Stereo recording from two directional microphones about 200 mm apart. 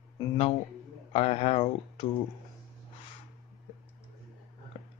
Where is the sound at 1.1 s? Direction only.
30° left (ahead or behind).